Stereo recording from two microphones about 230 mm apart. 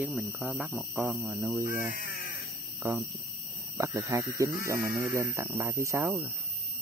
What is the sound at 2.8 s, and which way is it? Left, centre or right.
Speech, centre.